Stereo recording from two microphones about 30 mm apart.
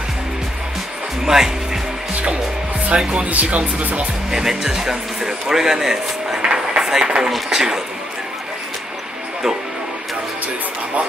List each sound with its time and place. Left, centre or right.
1.2 s speech: centre
2.9 s speech: right
3.4 s speech: right
4.3 s speech: centre
6.4 s a sound: right
6.8 s a sound: centre
7.1 s speech: right